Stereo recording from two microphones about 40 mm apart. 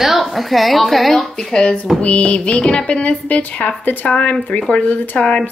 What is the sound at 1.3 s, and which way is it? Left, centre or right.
Music, centre.